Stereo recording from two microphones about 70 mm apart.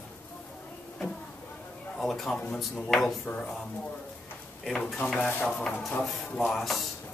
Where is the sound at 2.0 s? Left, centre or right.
Centre.